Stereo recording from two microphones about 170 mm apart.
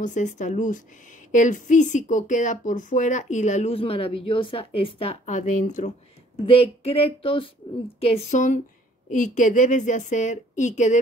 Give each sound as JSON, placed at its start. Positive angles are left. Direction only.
{"t": 0.0, "sound": "speech", "side_deg": 45}
{"t": 6.4, "sound": "speech", "side_deg": 35}